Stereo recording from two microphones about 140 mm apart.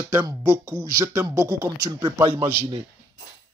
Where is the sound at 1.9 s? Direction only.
30° right (ahead or behind).